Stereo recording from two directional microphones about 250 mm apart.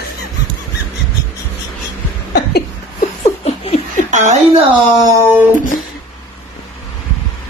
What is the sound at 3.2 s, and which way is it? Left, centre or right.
Laughter, left.